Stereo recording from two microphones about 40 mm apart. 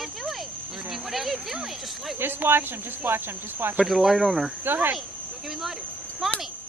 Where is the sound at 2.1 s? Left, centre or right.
Right.